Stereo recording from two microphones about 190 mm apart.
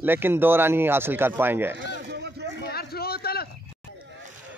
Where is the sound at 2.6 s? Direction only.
55° left (ahead or behind).